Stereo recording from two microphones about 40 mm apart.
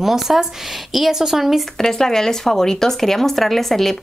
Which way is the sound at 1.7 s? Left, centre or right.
Centre.